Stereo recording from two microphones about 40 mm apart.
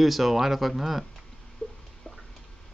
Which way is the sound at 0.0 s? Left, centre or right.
Centre.